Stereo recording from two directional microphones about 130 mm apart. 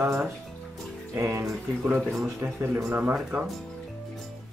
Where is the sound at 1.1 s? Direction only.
20° right (ahead or behind).